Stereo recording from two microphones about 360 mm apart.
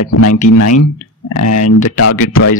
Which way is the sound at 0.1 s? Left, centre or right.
Left.